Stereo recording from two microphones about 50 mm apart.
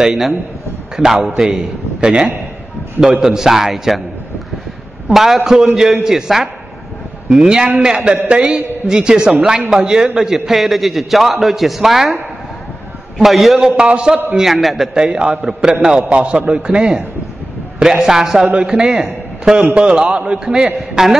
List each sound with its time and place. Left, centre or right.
0.0 s a man's voice: centre
5.1 s a man's voice: centre
13.2 s a man's voice: centre
13.7 s a man's voice: right
14.3 s a man's voice: centre
15.0 s a man's voice: centre
16.1 s a man's voice: right